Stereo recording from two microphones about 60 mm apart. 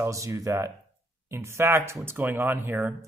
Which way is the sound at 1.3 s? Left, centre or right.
Right.